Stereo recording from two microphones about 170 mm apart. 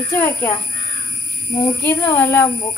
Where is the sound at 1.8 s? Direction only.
10° left (ahead or behind).